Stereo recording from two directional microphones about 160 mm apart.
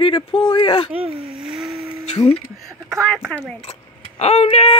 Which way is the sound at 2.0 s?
40° left (ahead or behind).